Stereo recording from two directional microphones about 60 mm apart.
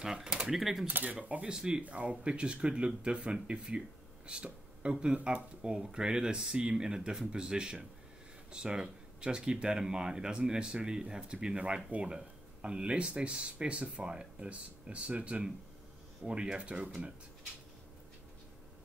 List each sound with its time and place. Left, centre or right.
0.0 s speech: centre
0.8 s speech: right